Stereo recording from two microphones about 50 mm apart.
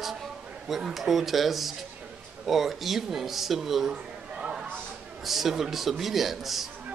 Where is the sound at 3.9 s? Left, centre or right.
Centre.